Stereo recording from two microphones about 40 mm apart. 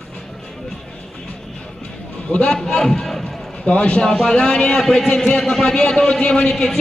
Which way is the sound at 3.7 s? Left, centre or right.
Left.